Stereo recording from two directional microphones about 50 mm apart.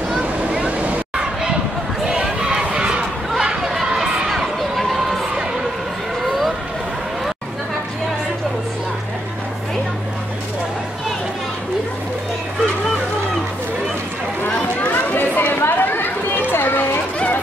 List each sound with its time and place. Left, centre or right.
0.2 s vehicle: right
2.0 s run: centre
3.3 s chatter: centre
4.4 s run: centre
14.9 s a sound: left